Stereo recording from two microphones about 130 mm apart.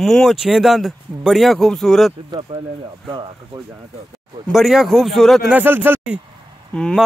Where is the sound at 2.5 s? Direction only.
40° right (ahead or behind).